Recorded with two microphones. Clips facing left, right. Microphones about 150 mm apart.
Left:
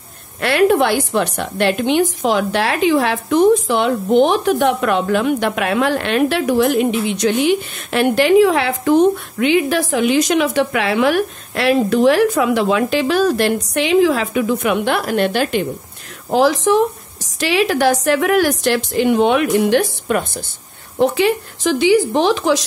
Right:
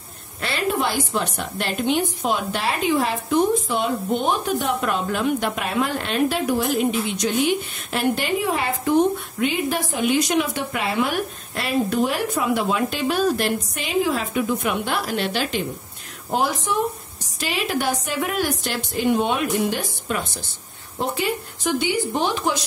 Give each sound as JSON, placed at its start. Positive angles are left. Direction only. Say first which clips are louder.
{"t": 0.4, "sound": "a woman's voice", "louder": "left 10 dB", "side_deg": 65}
{"t": 16.3, "sound": "a woman's voice", "louder": "left 9 dB", "side_deg": 90}
{"t": 21.0, "sound": "speech", "louder": "left 9 dB", "side_deg": 90}